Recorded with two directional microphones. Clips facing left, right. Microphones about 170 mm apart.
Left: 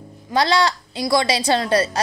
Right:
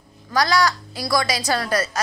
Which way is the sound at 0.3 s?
25° left (ahead or behind).